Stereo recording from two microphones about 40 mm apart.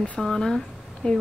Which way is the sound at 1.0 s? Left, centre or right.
Left.